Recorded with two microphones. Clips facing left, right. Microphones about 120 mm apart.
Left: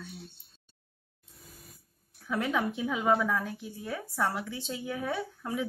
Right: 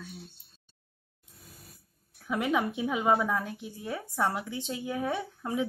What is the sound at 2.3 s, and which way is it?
A woman's voice, 15° right (ahead or behind).